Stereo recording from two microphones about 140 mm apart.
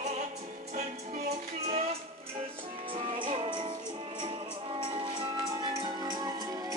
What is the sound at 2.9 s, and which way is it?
Music, 40° right (ahead or behind).